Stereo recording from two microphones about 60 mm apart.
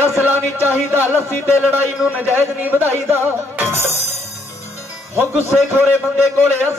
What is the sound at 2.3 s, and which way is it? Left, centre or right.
A man's voice, right.